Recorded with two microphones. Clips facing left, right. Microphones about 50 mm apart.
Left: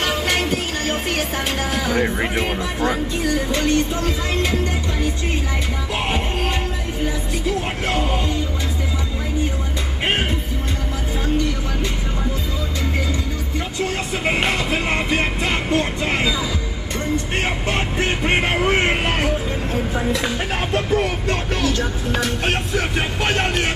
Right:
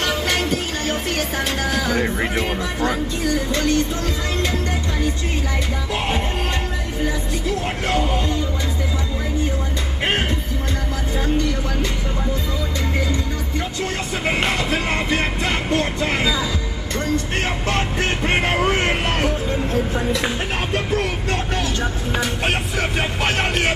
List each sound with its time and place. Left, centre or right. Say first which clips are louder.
0.0 s music: left 1 dB; centre
7.9 s music: right 1 dB; centre
14.2 s music: even; centre
17.6 s music: even; centre
18.3 s music: left 1 dB; centre
21.5 s music: left 2 dB; centre